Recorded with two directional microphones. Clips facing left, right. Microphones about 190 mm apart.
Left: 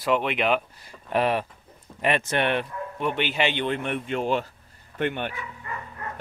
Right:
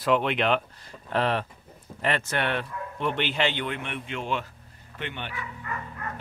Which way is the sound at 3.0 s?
5° left (ahead or behind).